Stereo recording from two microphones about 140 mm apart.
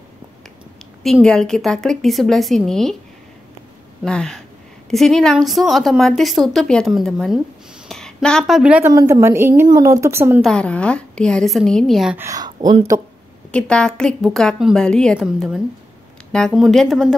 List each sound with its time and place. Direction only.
1.2 s a woman's voice: 5° left (ahead or behind)
4.0 s a woman's voice: 5° left (ahead or behind)
8.9 s a woman's voice: 20° right (ahead or behind)
10.4 s a woman's voice: 5° left (ahead or behind)
12.2 s speech: 25° right (ahead or behind)
13.5 s a woman's voice: 5° left (ahead or behind)
15.1 s a woman's voice: 5° right (ahead or behind)